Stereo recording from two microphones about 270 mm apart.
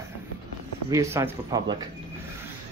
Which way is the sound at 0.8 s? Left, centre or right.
Centre.